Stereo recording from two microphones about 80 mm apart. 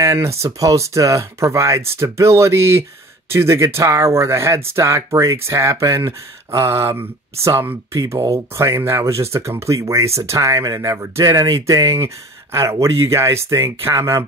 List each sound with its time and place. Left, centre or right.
0.0 s speech: right